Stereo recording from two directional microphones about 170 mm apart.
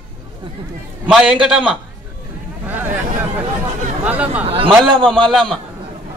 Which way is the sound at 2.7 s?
10° right (ahead or behind).